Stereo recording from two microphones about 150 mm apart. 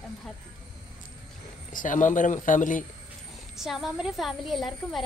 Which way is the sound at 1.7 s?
60° left (ahead or behind).